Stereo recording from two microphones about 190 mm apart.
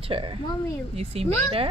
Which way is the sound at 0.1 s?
25° right (ahead or behind).